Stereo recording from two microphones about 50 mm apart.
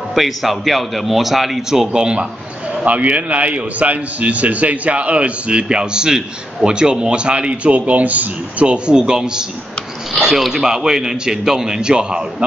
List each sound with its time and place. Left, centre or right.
0.1 s a man's voice: centre
1.9 s a man's voice: centre